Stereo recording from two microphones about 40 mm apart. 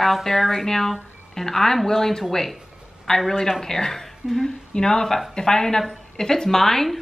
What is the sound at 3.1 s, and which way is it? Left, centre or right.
Music, centre.